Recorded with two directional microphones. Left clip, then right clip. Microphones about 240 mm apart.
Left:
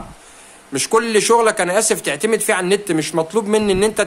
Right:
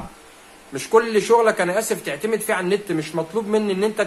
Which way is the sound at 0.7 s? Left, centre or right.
Left.